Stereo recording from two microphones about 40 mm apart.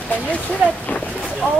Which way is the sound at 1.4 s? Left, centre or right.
Left.